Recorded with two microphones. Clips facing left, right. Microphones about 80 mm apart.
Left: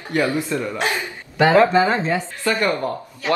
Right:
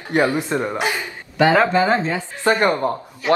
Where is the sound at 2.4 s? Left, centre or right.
Right.